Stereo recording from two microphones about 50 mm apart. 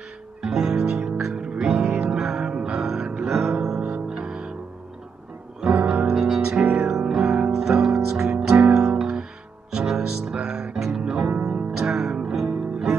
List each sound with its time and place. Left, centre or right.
0.4 s music: centre
5.6 s music: centre
6.0 s music: centre
6.9 s music: centre